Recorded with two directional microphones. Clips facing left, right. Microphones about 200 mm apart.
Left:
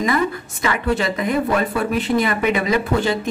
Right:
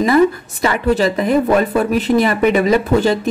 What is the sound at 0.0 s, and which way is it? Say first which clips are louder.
A woman's voice: right 7 dB; 35° right (ahead or behind).